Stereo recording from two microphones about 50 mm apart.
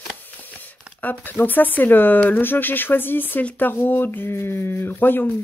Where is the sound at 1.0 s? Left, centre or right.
Left.